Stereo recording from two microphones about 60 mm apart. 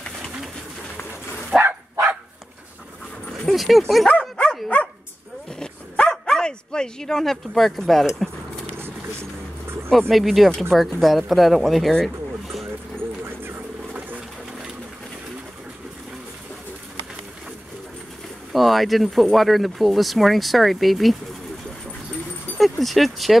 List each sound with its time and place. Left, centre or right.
1.5 s bow-wow: centre
3.4 s speech: centre
4.1 s dog: centre
5.6 s dog: centre
8.7 s vehicle: right
9.8 s speech: centre
13.2 s a sound: right
18.5 s speech: centre
22.6 s speech: centre